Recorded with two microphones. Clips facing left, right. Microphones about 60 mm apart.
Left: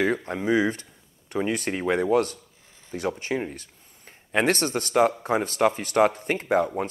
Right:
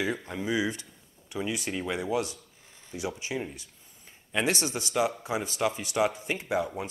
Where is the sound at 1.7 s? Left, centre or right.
Left.